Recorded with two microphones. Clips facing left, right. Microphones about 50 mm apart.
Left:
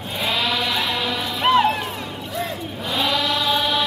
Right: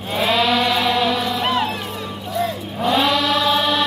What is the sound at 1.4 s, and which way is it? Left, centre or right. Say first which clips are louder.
Music: left 7 dB; left.